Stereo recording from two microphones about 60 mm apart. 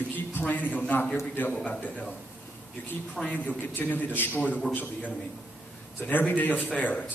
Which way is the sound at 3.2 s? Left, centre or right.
Left.